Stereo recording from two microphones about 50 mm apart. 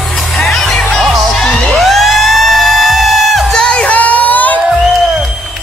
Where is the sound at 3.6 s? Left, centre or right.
Centre.